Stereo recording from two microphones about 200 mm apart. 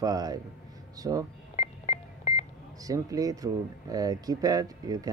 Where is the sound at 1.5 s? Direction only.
35° left (ahead or behind).